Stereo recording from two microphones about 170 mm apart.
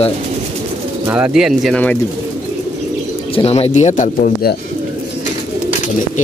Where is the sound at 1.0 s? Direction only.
10° right (ahead or behind).